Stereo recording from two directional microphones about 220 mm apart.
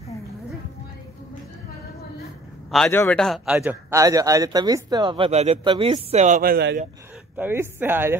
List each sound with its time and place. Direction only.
2.7 s speech: 5° left (ahead or behind)
3.5 s speech: 10° right (ahead or behind); by 6.8 s 45° right (ahead or behind)
7.3 s speech: 10° right (ahead or behind)